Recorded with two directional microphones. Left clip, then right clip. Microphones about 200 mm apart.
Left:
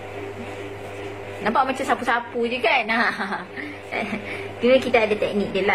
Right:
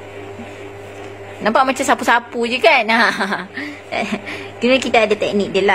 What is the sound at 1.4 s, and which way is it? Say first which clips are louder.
A woman's voice: right 6 dB; 55° right (ahead or behind).